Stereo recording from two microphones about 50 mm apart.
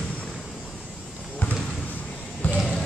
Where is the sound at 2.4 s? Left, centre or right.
Left.